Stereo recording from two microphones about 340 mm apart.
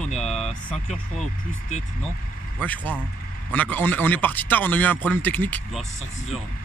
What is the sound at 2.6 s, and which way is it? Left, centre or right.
Speech, centre.